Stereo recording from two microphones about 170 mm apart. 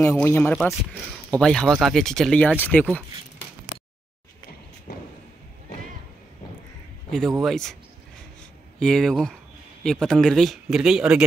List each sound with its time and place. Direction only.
0.0 s speech: 15° left (ahead or behind)
4.9 s a sound: 80° left
7.1 s a man's voice: 5° left (ahead or behind)
8.7 s speech: 5° left (ahead or behind)